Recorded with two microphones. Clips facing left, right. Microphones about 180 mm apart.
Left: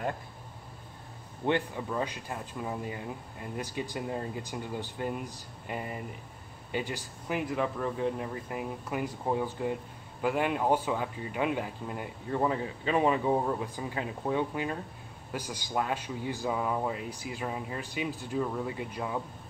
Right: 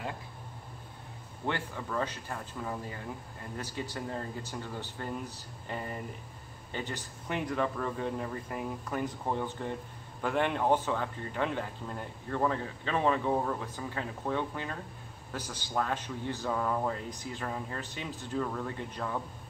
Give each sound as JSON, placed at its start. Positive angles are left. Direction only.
{"t": 1.4, "sound": "speech", "side_deg": 20}